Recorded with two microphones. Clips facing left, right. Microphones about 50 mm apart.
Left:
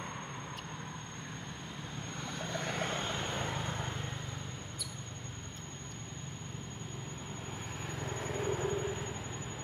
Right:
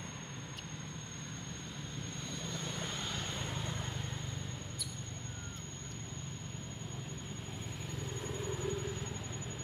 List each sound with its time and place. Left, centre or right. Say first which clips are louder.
2.5 s vehicle: left 8 dB; left
3.1 s vehicle: left 4 dB; left
8.1 s vehicle: left 6 dB; left